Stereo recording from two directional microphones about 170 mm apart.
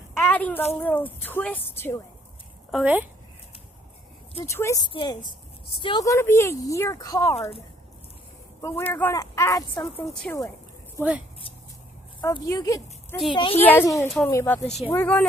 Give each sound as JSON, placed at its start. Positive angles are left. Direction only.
{"t": 0.1, "sound": "a sound", "side_deg": 10}
{"t": 0.7, "sound": "speech", "side_deg": 10}
{"t": 2.7, "sound": "speech", "side_deg": -10}
{"t": 4.5, "sound": "speech", "side_deg": 15}
{"t": 6.0, "sound": "speech", "side_deg": 15}
{"t": 7.3, "sound": "speech", "side_deg": 40}
{"t": 8.5, "sound": "speech", "side_deg": 15}
{"t": 9.9, "sound": "speech", "side_deg": 5}
{"t": 12.2, "sound": "speech", "side_deg": 15}
{"t": 13.6, "sound": "speech", "side_deg": 10}
{"t": 14.3, "sound": "speech", "side_deg": 15}
{"t": 14.6, "sound": "speech", "side_deg": 40}
{"t": 14.9, "sound": "speech", "side_deg": 10}